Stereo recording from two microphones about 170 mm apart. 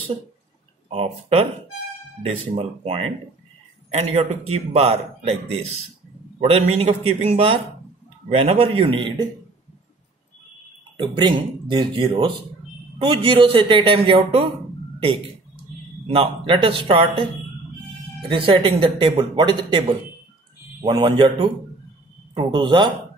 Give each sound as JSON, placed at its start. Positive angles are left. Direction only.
{"t": 0.9, "sound": "a man's voice", "side_deg": -35}
{"t": 11.0, "sound": "a man's voice", "side_deg": -30}
{"t": 16.1, "sound": "a man's voice", "side_deg": -35}
{"t": 18.3, "sound": "speech", "side_deg": -30}
{"t": 20.8, "sound": "speech", "side_deg": -25}